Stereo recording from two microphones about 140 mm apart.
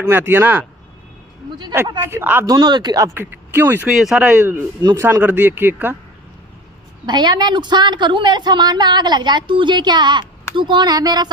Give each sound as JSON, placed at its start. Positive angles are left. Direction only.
{"t": 0.0, "sound": "speech", "side_deg": -15}
{"t": 2.0, "sound": "speech", "side_deg": -15}
{"t": 2.4, "sound": "speech", "side_deg": -30}
{"t": 3.2, "sound": "speech", "side_deg": -15}
{"t": 3.9, "sound": "speech", "side_deg": -5}
{"t": 4.8, "sound": "speech", "side_deg": -20}
{"t": 7.1, "sound": "a woman's voice", "side_deg": -30}